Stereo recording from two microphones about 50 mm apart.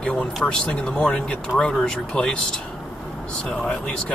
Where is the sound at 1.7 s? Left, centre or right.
Centre.